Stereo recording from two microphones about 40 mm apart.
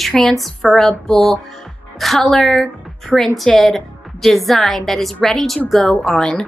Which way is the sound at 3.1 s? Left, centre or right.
Centre.